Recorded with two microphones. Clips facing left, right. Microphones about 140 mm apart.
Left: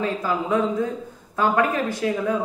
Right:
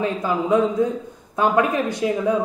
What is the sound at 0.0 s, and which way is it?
A man's voice, 20° right (ahead or behind).